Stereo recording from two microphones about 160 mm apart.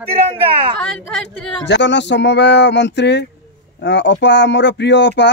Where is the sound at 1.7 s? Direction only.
90° left.